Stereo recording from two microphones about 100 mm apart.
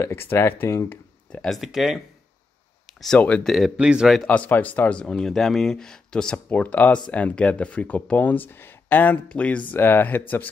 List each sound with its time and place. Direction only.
0.0 s speech: 20° left (ahead or behind)
1.3 s speech: 5° left (ahead or behind)
3.2 s speech: 10° left (ahead or behind)
3.5 s speech: 5° right (ahead or behind)
4.3 s speech: 15° left (ahead or behind)